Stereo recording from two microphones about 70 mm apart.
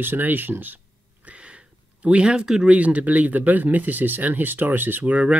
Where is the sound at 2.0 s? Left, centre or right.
Centre.